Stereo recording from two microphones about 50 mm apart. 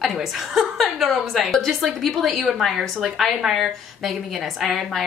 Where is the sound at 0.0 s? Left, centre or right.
Centre.